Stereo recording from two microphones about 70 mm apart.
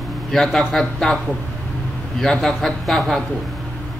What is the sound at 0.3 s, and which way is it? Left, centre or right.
Speech, centre.